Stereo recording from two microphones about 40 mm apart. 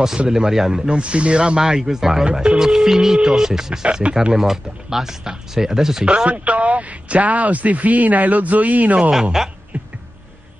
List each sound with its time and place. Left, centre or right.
0.3 s speech: centre
0.8 s speech: right
1.6 s speech: centre
2.3 s speech: right
2.6 s speech: centre
3.8 s speech: right
4.1 s speech: centre
6.0 s speech: right
9.2 s speech: centre